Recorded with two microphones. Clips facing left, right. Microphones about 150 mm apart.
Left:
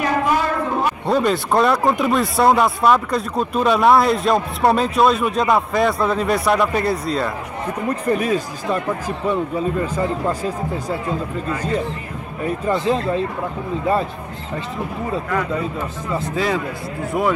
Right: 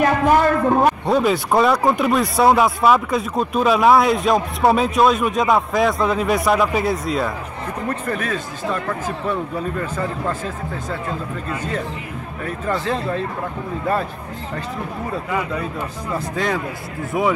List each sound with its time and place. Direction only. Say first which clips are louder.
0.0 s a sound: right 4 dB; 50° right (ahead or behind)
1.0 s speech: even; centre (ahead or behind)
7.9 s speech: left 6 dB; 35° left (ahead or behind)
8.8 s speech: left 2 dB; 10° left (ahead or behind)
12.4 s speech: left 4 dB; 15° left (ahead or behind)
16.1 s speech: left 2 dB; centre (ahead or behind)